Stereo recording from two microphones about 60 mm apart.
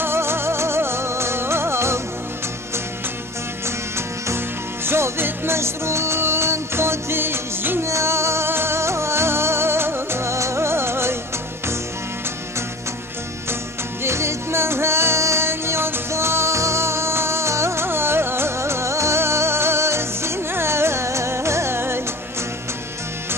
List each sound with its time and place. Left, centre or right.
0.0 s music: right
4.8 s music: right
7.8 s music: right
14.0 s music: right